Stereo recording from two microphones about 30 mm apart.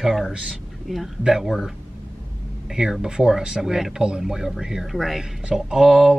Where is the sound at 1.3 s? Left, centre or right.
Centre.